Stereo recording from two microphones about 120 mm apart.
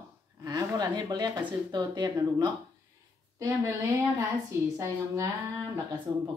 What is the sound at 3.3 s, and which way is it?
Speech, 25° right (ahead or behind).